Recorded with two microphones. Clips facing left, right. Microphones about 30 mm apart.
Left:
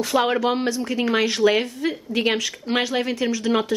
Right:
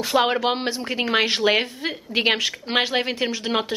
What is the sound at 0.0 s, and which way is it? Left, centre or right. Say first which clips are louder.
Speech: even; right.